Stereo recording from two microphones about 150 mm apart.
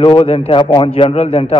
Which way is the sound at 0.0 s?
40° left (ahead or behind).